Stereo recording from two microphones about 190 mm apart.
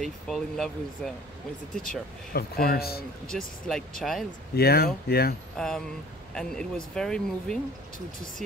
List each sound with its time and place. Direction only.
0.0 s speech: centre (ahead or behind)
1.8 s speech: 50° left (ahead or behind)
3.3 s speech: 5° left (ahead or behind)
4.6 s speech: 55° left (ahead or behind)
5.6 s speech: 5° left (ahead or behind)